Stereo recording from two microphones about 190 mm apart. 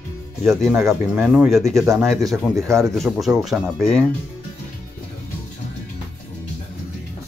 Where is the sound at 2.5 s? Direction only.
15° right (ahead or behind).